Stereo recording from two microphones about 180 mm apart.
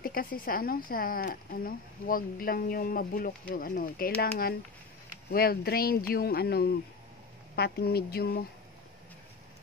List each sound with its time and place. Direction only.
0.0 s speech: 55° left (ahead or behind)